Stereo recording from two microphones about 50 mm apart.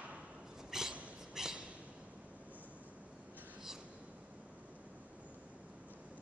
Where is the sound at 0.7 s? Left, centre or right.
Centre.